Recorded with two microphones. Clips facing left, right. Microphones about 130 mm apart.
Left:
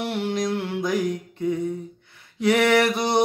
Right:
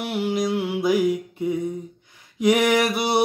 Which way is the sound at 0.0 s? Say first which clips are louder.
Right 1 dB; centre (ahead or behind).